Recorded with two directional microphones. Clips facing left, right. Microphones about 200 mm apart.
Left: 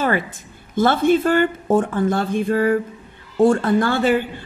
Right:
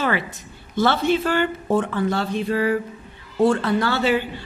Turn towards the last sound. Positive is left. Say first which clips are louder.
# left 3 dB
turn(degrees=50)  # may be behind; listen again after turning